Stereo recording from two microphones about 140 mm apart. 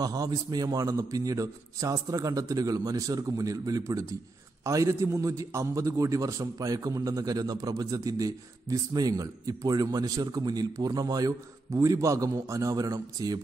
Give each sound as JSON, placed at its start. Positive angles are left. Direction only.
{"t": 0.0, "sound": "a man's voice", "side_deg": -25}